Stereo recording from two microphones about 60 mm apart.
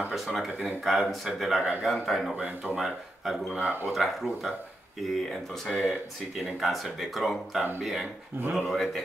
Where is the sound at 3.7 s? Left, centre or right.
Right.